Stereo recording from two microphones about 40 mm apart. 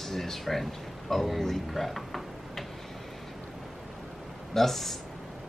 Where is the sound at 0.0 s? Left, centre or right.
Centre.